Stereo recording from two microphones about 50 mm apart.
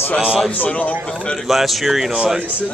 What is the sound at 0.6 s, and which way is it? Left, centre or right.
Speech, left.